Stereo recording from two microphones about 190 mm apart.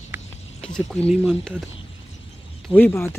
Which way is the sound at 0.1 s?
10° right (ahead or behind).